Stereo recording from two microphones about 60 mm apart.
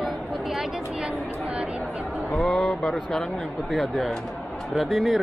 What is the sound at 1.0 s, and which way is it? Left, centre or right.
Chatter, centre.